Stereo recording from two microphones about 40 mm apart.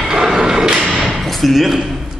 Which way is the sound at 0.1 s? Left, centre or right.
Centre.